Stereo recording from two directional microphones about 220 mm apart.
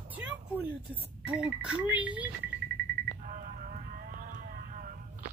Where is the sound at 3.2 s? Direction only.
35° right (ahead or behind).